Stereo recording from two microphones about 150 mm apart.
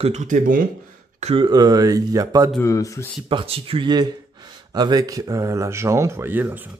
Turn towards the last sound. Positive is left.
turn(degrees=-10)  # may be behind; listen again after turning